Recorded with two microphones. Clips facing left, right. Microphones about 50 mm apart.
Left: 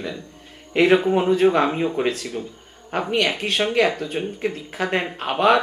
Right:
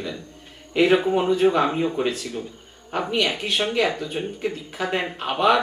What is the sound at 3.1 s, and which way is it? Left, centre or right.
Speech, left.